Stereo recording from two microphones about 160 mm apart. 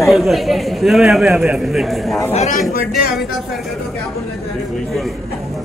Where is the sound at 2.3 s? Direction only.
45° left (ahead or behind).